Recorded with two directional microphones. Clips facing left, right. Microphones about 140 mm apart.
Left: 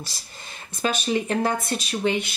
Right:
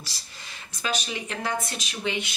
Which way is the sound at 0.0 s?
45° left (ahead or behind).